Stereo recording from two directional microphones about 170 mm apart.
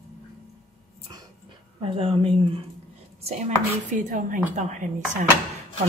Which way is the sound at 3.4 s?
50° right (ahead or behind).